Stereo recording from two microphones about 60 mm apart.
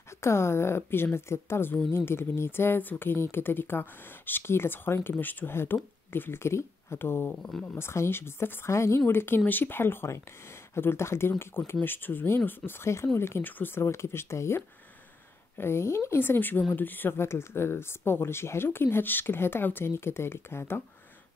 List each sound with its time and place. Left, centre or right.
0.2 s speech: left
12.8 s speech: left
13.4 s speech: left
13.8 s speech: left